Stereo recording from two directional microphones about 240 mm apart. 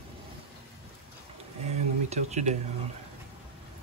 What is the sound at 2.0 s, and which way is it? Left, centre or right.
Speech, right.